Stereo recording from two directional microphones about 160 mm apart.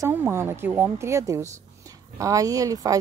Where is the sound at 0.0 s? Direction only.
15° right (ahead or behind).